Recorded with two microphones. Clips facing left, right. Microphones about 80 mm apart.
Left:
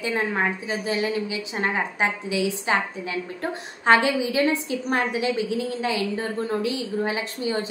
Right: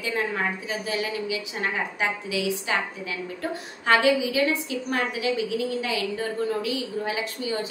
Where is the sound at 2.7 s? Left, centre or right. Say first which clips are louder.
Left 5 dB; left.